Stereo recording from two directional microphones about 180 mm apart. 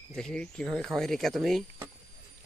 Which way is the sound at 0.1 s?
5° left (ahead or behind).